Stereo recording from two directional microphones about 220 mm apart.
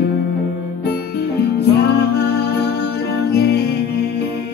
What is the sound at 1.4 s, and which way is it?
Music, 50° left (ahead or behind).